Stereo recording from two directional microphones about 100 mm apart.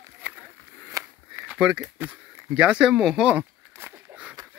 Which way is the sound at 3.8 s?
25° right (ahead or behind).